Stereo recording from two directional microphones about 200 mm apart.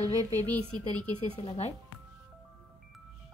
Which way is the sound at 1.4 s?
30° left (ahead or behind).